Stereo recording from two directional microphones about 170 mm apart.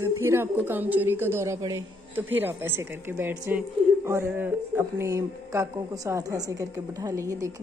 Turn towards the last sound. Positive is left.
turn(degrees=-20)  # may be behind; listen again after turning